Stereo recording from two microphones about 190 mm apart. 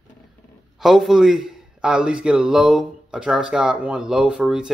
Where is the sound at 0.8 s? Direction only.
Centre (ahead or behind).